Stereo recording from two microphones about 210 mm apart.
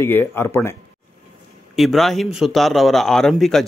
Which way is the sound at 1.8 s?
Centre (ahead or behind).